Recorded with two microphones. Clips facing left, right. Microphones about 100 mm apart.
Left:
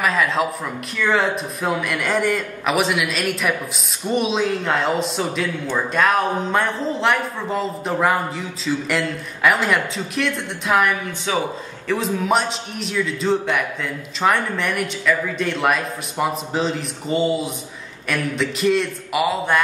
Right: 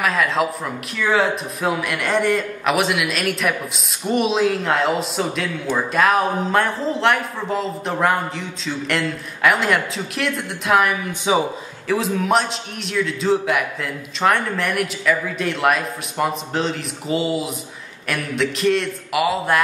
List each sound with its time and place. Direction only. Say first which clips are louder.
0.0 s a sound: even; centre (ahead or behind)
0.9 s speech: right 1 dB; centre (ahead or behind)
11.3 s a man's voice: right 4 dB; 15° right (ahead or behind)
11.9 s speech: right 1 dB; centre (ahead or behind)